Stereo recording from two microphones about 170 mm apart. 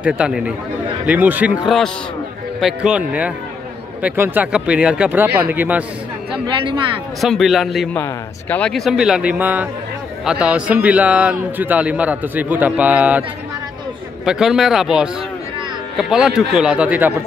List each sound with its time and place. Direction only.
0.0 s a man's voice: 5° right (ahead or behind)
2.6 s a man's voice: 5° right (ahead or behind)
6.4 s speech: 30° right (ahead or behind)
7.2 s a man's voice: centre (ahead or behind)
14.2 s speech: 5° right (ahead or behind)